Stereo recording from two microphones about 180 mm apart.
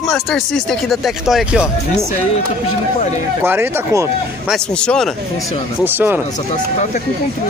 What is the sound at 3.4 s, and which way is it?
Speech, 10° right (ahead or behind).